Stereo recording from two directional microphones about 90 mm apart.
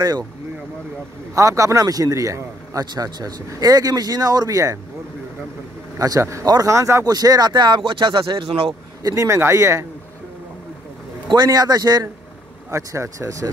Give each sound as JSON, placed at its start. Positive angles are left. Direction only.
{"t": 1.3, "sound": "a man's voice", "side_deg": -35}
{"t": 5.9, "sound": "a man's voice", "side_deg": -40}
{"t": 6.4, "sound": "speech", "side_deg": -50}
{"t": 6.7, "sound": "a man's voice", "side_deg": -35}
{"t": 7.1, "sound": "speech", "side_deg": -45}
{"t": 9.0, "sound": "a man's voice", "side_deg": -35}
{"t": 11.2, "sound": "speech", "side_deg": -50}
{"t": 12.7, "sound": "a man's voice", "side_deg": -35}